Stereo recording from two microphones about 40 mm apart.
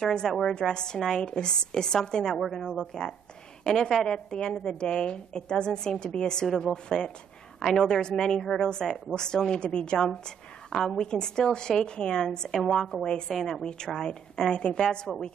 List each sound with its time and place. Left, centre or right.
0.0 s a woman's voice: centre
2.2 s a woman's voice: centre
2.9 s a woman's voice: centre
12.4 s a woman's voice: centre
15.1 s a woman's voice: centre